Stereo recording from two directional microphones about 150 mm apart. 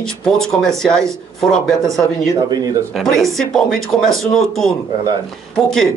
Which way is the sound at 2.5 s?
25° right (ahead or behind).